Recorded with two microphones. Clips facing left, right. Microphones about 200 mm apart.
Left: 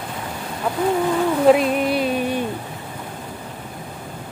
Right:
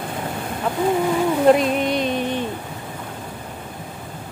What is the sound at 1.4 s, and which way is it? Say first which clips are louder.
Music: left 1 dB; 5° left (ahead or behind).